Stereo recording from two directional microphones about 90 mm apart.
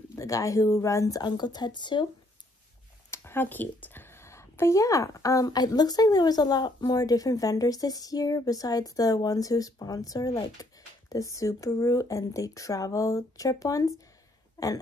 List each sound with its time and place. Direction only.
0.1 s speech: 35° left (ahead or behind)
1.2 s speech: 55° left (ahead or behind)
3.1 s speech: 25° left (ahead or behind); by 14.7 s 40° left (ahead or behind)